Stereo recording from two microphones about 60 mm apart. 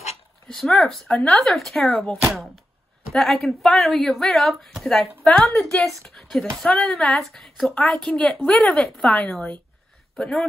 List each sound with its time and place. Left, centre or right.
0.6 s a woman's voice: centre
1.0 s speech: centre
1.3 s a woman's voice: centre; by 9.6 s left